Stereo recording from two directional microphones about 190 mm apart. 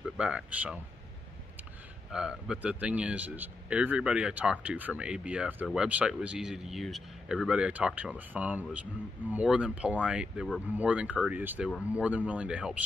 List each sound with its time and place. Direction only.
0.0 s speech: 5° right (ahead or behind)
2.1 s a man's voice: 5° right (ahead or behind)